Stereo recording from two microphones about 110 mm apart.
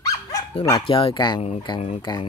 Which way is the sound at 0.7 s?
50° left (ahead or behind).